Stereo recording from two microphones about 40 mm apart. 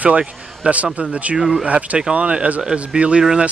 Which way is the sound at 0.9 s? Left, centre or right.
Right.